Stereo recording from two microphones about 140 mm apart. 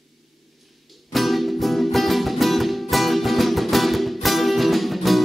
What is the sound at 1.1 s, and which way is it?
Music, centre (ahead or behind).